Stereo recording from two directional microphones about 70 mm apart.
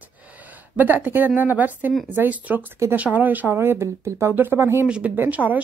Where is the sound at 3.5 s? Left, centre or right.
Right.